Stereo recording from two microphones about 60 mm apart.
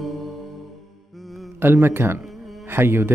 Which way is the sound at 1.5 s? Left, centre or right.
Right.